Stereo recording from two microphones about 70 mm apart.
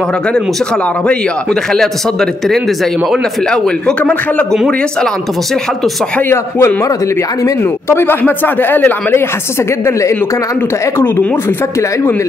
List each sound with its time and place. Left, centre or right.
1.0 s speech: centre
6.2 s a man's voice: left
7.9 s speech: left